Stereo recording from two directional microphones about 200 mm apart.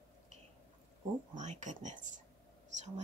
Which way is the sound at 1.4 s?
35° right (ahead or behind).